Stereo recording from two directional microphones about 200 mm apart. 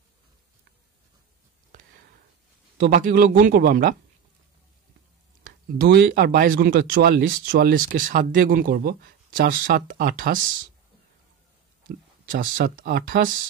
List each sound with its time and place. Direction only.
2.9 s speech: 40° right (ahead or behind)
5.8 s speech: 50° right (ahead or behind)
12.3 s speech: 45° right (ahead or behind)